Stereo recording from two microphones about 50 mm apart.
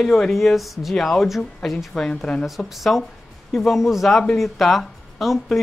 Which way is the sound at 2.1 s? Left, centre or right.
Centre.